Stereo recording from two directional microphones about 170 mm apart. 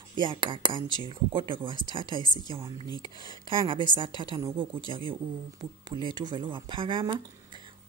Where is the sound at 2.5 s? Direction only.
30° right (ahead or behind).